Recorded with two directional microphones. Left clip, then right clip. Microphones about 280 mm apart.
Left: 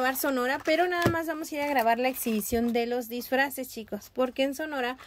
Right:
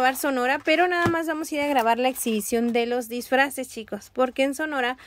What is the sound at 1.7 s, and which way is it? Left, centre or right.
Speech, right.